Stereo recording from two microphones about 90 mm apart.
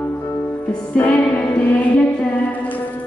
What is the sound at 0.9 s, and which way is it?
Music, 20° left (ahead or behind).